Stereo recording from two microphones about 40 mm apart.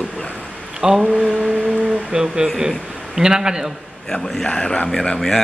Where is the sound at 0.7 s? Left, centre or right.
Centre.